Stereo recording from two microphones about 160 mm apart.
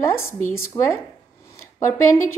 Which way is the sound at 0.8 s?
25° left (ahead or behind).